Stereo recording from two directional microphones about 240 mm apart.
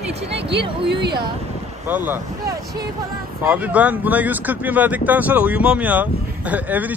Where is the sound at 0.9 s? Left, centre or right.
Right.